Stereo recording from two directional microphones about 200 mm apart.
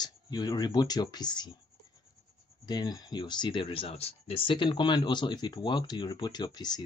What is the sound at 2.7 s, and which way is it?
Speech, 20° left (ahead or behind).